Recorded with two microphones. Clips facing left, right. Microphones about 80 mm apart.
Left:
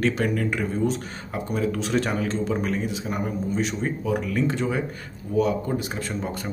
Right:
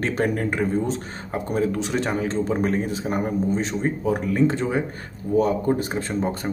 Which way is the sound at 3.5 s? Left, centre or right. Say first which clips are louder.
Right 2 dB; right.